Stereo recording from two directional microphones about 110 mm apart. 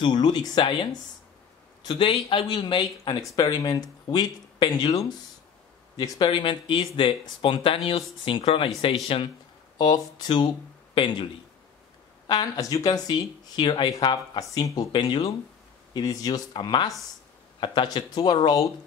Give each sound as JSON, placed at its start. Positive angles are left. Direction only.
{"t": 0.0, "sound": "speech", "side_deg": 45}
{"t": 1.9, "sound": "speech", "side_deg": 50}
{"t": 3.2, "sound": "speech", "side_deg": 35}
{"t": 9.8, "sound": "speech", "side_deg": 35}
{"t": 12.3, "sound": "speech", "side_deg": 35}